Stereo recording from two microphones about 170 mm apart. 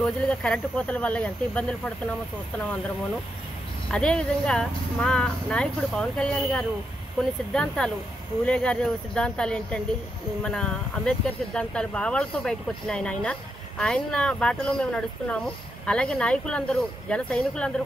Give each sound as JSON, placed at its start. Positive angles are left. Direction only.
{"t": 0.0, "sound": "speech", "side_deg": 5}
{"t": 3.9, "sound": "speech", "side_deg": 5}